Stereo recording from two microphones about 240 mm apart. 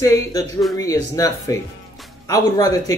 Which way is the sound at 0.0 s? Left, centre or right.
Centre.